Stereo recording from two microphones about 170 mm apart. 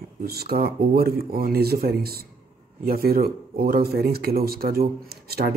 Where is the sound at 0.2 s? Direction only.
65° right (ahead or behind).